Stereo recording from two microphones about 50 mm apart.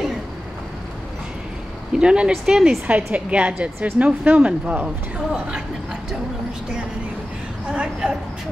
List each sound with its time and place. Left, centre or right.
2.0 s speech: centre
3.1 s speech: right
7.7 s speech: centre